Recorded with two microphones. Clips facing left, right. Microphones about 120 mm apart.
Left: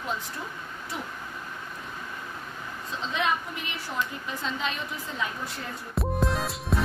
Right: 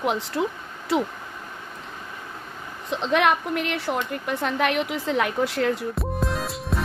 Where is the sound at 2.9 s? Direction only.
70° right (ahead or behind); by 5.9 s 90° right.